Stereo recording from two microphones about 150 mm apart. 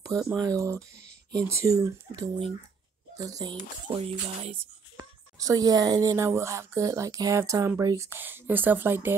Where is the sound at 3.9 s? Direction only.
40° right (ahead or behind).